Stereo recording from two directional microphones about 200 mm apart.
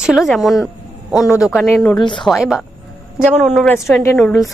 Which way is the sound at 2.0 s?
25° left (ahead or behind).